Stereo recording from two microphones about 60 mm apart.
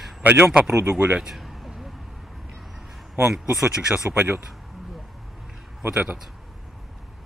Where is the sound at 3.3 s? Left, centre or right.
Centre.